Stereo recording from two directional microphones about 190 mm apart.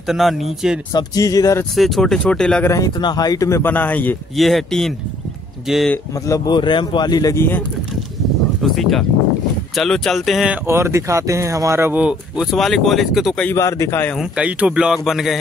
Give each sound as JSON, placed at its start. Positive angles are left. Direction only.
{"t": 0.0, "sound": "speech", "side_deg": 0}
{"t": 0.9, "sound": "speech", "side_deg": 20}
{"t": 1.8, "sound": "speech", "side_deg": 0}
{"t": 2.7, "sound": "speech", "side_deg": 20}
{"t": 6.2, "sound": "speech", "side_deg": 20}
{"t": 8.6, "sound": "speech", "side_deg": 0}
{"t": 14.1, "sound": "speech", "side_deg": -5}